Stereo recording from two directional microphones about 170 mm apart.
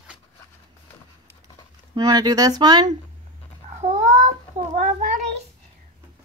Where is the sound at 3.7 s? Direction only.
45° right (ahead or behind).